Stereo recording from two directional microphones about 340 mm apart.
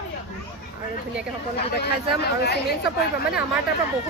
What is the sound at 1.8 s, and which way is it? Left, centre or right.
Speech, left.